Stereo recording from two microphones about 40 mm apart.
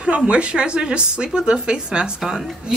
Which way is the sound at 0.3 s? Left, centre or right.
Right.